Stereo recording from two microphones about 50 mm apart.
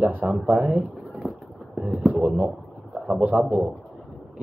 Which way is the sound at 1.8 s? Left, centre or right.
Right.